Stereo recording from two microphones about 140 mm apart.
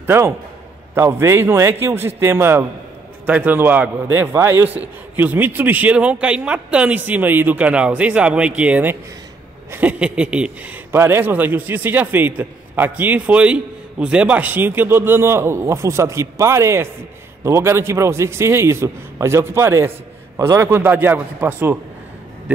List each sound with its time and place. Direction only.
0.0 s a man's voice: 15° right (ahead or behind)